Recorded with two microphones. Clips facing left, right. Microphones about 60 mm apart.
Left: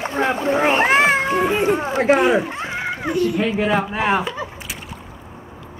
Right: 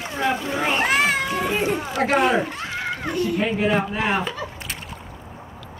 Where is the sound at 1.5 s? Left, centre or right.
Left.